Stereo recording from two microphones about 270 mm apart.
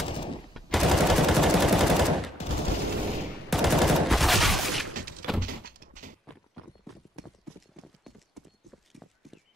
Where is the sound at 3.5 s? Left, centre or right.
Centre.